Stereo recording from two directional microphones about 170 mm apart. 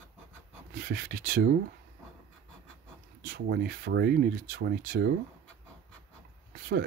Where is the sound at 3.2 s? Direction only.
60° right (ahead or behind).